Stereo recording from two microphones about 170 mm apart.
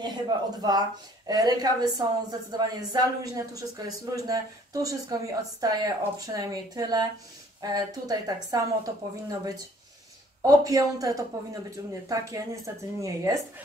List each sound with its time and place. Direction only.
0.0 s speech: 25° right (ahead or behind)